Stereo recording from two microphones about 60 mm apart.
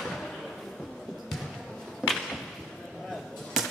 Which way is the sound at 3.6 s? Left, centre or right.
Centre.